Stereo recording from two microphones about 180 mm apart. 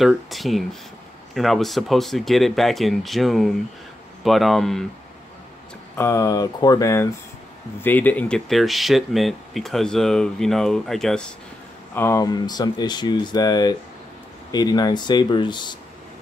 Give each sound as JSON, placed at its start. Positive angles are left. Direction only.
{"t": 0.0, "sound": "speech", "side_deg": 0}
{"t": 5.9, "sound": "speech", "side_deg": 15}
{"t": 11.9, "sound": "speech", "side_deg": 15}